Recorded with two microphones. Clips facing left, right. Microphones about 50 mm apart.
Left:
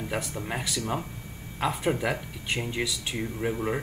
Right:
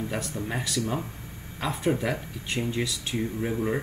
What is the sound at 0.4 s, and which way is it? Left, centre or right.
Speech, centre.